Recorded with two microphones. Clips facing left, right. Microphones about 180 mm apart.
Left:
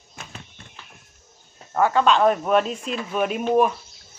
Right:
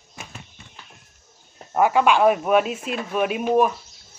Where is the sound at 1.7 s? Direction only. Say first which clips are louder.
Right 1 dB; 15° right (ahead or behind).